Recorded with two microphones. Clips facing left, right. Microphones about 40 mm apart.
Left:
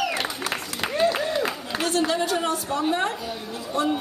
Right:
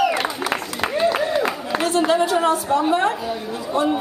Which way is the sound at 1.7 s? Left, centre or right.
Centre.